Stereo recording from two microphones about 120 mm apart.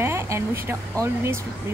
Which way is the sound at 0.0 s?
20° right (ahead or behind).